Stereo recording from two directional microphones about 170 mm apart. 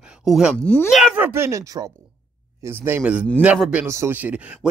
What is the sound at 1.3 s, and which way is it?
Speech, 15° right (ahead or behind).